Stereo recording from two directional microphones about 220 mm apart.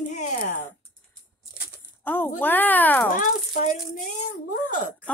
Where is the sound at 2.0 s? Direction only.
10° left (ahead or behind).